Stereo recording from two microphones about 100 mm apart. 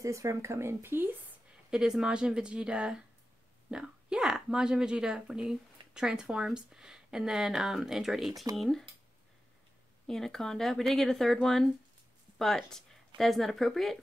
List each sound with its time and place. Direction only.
0.0 s speech: 30° right (ahead or behind)
1.7 s a woman's voice: 5° right (ahead or behind)
10.0 s speech: 5° left (ahead or behind)